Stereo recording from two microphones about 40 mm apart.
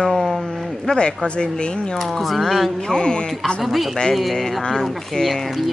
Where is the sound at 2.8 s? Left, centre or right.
Centre.